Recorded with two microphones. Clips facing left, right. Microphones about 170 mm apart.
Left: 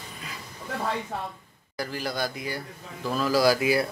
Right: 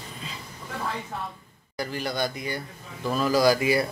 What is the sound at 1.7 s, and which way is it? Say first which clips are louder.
A man's voice: right 1 dB; centre (ahead or behind).